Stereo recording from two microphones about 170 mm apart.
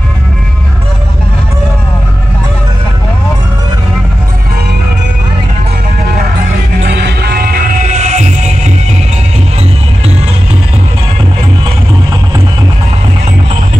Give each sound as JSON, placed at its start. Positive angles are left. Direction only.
{"t": 6.9, "sound": "music", "side_deg": -80}